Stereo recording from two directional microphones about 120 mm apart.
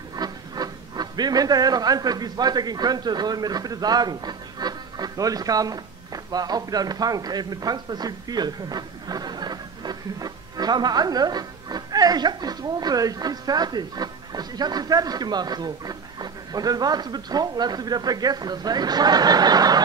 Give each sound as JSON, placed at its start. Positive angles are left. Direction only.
{"t": 0.1, "sound": "speech", "side_deg": -35}